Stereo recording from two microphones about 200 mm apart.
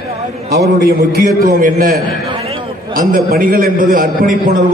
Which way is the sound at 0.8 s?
45° right (ahead or behind).